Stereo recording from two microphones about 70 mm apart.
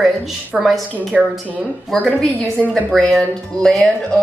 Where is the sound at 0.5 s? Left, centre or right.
Centre.